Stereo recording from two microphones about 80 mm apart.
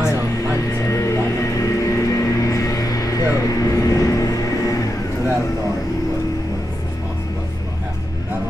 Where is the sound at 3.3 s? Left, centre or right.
Left.